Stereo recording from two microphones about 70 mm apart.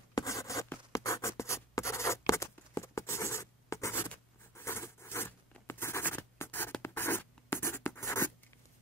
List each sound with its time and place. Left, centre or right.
0.2 s a sound: left
0.9 s writing: left
4.6 s patter: left
5.7 s scratch: left
6.8 s writing: left